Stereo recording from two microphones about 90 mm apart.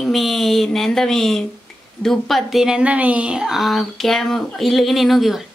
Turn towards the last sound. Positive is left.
turn(degrees=0)  # may be behind; listen again after turning